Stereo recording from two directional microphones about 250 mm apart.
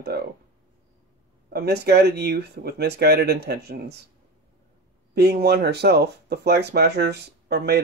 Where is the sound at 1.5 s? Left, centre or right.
Right.